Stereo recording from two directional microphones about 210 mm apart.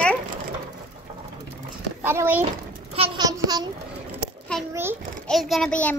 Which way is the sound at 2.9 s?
25° right (ahead or behind).